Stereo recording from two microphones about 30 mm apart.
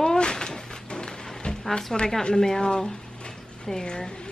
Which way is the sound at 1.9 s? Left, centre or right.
Centre.